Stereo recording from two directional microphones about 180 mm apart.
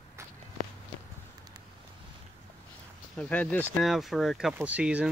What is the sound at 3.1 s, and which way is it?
Speech, 5° left (ahead or behind).